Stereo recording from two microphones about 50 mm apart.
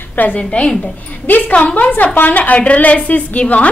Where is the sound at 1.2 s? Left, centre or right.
Left.